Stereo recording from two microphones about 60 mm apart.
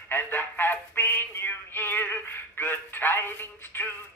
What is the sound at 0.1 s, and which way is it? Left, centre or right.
Music, left.